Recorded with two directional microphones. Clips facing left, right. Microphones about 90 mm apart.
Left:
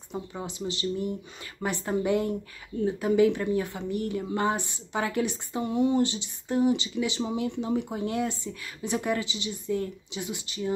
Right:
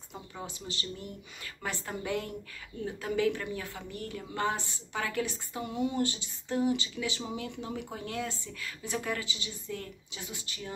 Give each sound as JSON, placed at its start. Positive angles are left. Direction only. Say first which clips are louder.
{"t": 0.1, "sound": "a woman's voice", "louder": "left 7 dB", "side_deg": 20}